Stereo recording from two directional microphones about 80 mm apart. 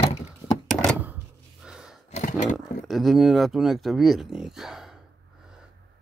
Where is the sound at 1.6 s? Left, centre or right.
Centre.